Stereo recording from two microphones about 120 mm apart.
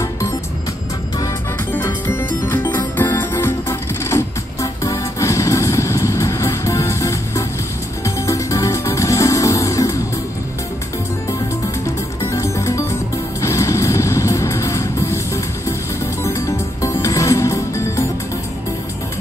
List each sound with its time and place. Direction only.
1.7 s music: 20° left (ahead or behind)
12.2 s music: 25° left (ahead or behind)